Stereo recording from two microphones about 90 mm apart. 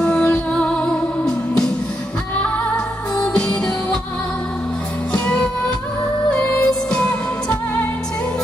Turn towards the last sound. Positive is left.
turn(degrees=15)  # may be behind; listen again after turning